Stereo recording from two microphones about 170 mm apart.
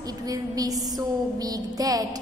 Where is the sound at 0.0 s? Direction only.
20° right (ahead or behind).